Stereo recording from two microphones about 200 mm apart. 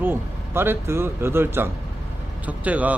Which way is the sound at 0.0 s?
10° right (ahead or behind).